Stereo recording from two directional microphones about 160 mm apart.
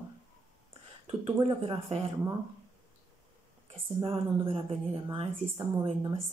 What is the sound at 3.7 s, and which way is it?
Speech, 35° right (ahead or behind).